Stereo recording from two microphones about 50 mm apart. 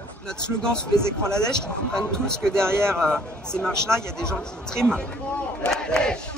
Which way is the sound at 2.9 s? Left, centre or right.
Centre.